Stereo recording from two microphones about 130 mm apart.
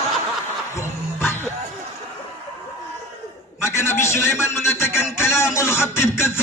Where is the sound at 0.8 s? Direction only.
20° left (ahead or behind).